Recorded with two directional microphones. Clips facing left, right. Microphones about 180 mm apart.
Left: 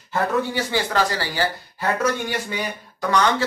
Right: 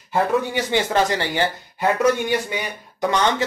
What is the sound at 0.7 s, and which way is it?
Speech, 20° right (ahead or behind).